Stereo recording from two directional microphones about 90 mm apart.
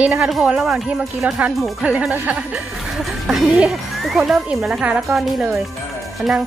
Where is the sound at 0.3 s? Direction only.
5° right (ahead or behind).